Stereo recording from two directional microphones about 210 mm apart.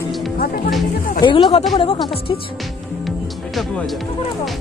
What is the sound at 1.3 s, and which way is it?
Speech, 25° left (ahead or behind).